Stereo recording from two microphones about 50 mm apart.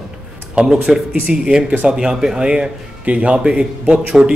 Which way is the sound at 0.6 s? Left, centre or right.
Right.